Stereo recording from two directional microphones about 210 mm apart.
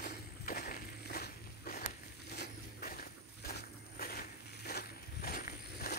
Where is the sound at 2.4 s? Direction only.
45° left (ahead or behind).